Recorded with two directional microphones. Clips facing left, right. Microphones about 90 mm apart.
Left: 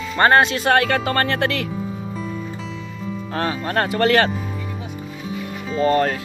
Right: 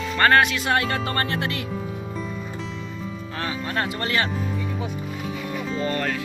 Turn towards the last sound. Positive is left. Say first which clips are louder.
# left 8 dB
turn(degrees=40)  # may be behind; listen again after turning